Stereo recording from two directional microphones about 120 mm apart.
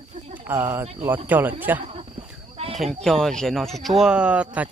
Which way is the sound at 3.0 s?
5° left (ahead or behind).